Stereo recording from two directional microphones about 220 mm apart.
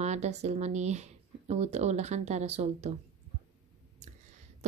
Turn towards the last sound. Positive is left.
turn(degrees=-30)  # may be behind; listen again after turning